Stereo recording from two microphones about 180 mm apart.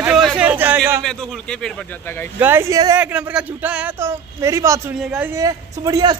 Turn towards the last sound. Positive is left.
turn(degrees=-20)  # may be behind; listen again after turning